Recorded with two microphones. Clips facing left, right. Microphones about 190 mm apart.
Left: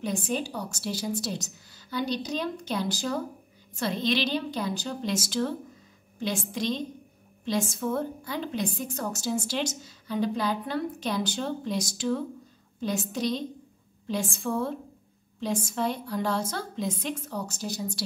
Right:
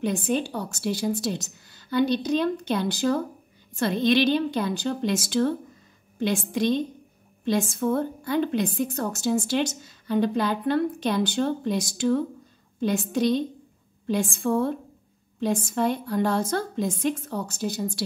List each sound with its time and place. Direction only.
0.0 s a woman's voice: 60° right (ahead or behind)